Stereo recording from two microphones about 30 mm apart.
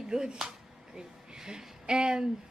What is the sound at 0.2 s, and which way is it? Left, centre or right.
Speech, right.